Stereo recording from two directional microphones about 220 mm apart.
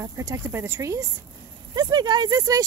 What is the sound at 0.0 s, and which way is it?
Speech, 15° right (ahead or behind).